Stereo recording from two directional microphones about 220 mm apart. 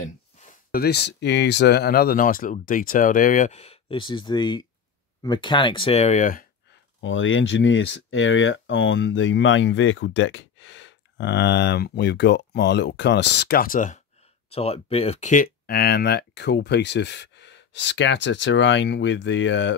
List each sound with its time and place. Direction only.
0.0 s speech: 35° left (ahead or behind)
7.0 s speech: 60° left (ahead or behind)